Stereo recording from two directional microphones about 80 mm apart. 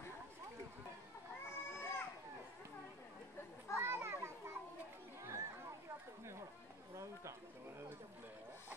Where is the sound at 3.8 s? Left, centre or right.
Right.